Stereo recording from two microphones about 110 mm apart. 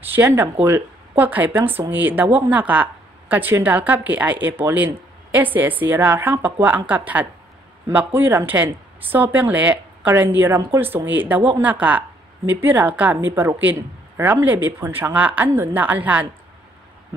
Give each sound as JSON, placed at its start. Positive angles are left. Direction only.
{"t": 0.0, "sound": "a woman's voice", "side_deg": -20}